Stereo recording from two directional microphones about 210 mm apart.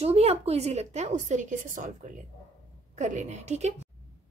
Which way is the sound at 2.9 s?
35° right (ahead or behind).